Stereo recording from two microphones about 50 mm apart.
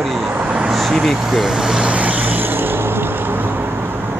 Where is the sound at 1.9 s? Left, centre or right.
Right.